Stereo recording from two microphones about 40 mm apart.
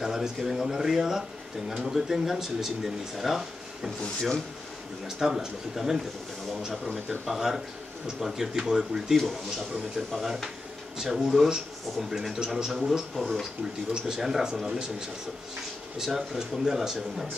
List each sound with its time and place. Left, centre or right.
0.0 s speech: centre
4.0 s speech: centre
5.0 s speech: centre
7.2 s speech: centre
9.1 s speech: centre